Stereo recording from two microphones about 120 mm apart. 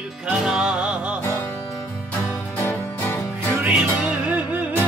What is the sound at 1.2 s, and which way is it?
Music, 20° left (ahead or behind).